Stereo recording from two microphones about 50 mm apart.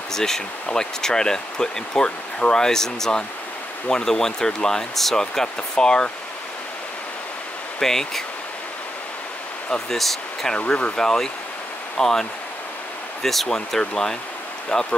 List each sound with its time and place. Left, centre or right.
0.1 s speech: centre
7.8 s speech: centre
9.8 s speech: centre